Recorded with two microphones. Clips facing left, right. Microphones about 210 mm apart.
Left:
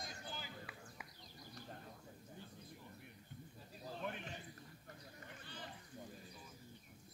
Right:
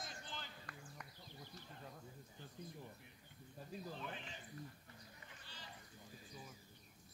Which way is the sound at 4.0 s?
55° left (ahead or behind).